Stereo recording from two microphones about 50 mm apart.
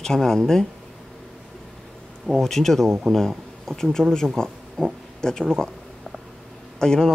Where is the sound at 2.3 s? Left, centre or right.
Centre.